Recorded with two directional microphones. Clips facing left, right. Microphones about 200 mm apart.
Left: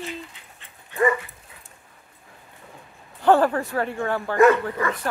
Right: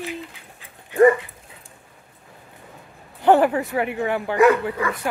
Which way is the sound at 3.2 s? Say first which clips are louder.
Right 2 dB; 15° right (ahead or behind).